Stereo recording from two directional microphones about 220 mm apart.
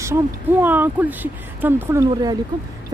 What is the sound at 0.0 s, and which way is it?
Speech, 10° right (ahead or behind).